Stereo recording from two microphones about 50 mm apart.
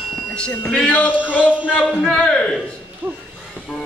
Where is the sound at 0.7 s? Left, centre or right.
Left.